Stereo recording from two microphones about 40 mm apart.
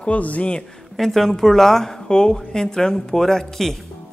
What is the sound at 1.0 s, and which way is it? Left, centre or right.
Speech, centre.